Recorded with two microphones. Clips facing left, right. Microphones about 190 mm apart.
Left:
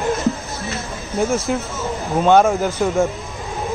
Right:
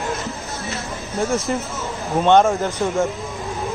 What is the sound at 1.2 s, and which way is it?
Speech, centre (ahead or behind).